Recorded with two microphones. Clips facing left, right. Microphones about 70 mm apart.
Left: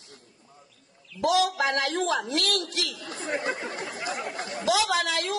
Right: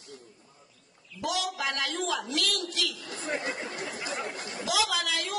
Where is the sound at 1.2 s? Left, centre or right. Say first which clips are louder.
Left 8 dB; left.